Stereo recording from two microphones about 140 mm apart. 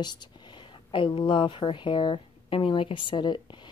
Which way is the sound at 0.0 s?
30° left (ahead or behind).